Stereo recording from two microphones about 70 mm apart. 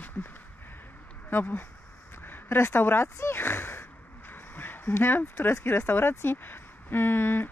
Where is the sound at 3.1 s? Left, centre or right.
Left.